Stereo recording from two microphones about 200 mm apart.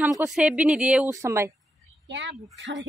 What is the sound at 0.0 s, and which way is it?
Speech, 5° right (ahead or behind).